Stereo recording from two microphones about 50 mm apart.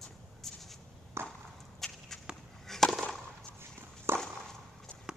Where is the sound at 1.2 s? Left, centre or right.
Right.